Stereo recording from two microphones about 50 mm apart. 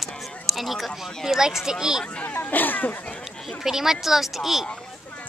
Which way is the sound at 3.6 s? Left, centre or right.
Centre.